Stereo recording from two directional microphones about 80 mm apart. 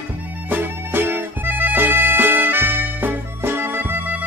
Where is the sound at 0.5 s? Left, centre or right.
Right.